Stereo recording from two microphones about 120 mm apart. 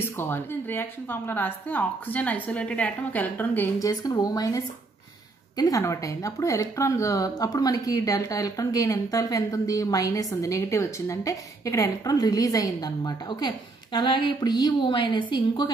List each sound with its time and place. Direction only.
0.0 s a woman's voice: 20° left (ahead or behind)
3.8 s speech: 30° left (ahead or behind)
5.6 s a woman's voice: 30° left (ahead or behind)